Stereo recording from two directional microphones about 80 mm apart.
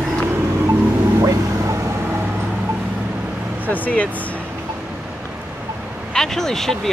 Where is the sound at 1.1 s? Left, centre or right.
Right.